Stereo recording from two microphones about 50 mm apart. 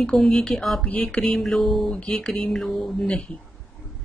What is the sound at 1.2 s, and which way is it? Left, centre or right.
Music, centre.